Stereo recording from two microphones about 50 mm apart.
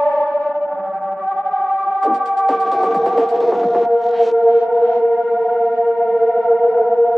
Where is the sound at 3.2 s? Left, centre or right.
Centre.